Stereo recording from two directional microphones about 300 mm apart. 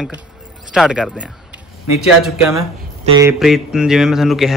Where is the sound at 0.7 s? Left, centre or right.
Centre.